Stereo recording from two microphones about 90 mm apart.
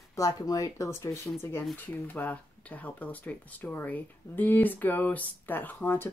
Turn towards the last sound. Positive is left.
turn(degrees=25)  # may be behind; listen again after turning